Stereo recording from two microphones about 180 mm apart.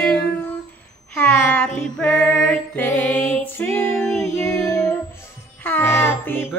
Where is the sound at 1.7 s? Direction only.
5° left (ahead or behind).